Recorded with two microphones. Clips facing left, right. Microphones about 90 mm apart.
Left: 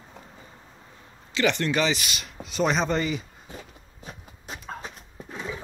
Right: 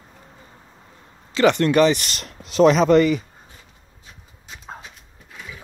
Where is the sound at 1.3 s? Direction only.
45° right (ahead or behind).